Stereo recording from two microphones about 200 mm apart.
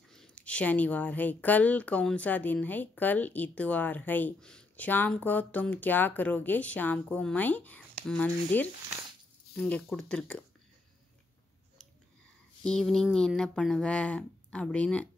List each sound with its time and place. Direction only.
0.1 s speech: 5° left (ahead or behind)
12.6 s speech: 5° left (ahead or behind)